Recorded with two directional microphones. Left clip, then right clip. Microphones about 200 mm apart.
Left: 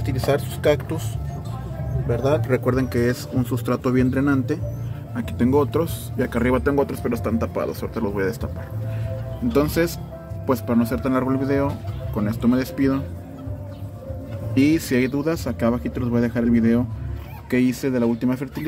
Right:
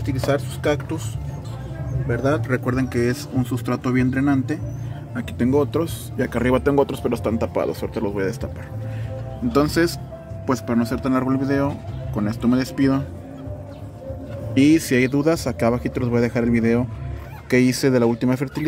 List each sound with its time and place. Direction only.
0.0 s speech: 5° left (ahead or behind)
2.0 s speech: centre (ahead or behind); by 8.0 s 15° right (ahead or behind)
8.0 s speech: centre (ahead or behind)
9.5 s speech: centre (ahead or behind)
14.5 s speech: 10° right (ahead or behind)